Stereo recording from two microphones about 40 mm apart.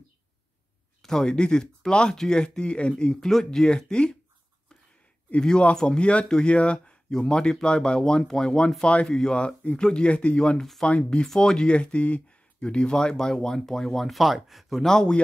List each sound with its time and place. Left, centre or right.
1.0 s speech: centre
3.2 s speech: centre
3.4 s speech: left
5.4 s speech: left
6.2 s speech: centre
6.5 s speech: left
8.0 s speech: centre
14.0 s speech: centre
14.9 s speech: centre